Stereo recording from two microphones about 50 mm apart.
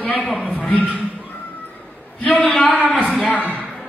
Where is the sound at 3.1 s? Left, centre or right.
Centre.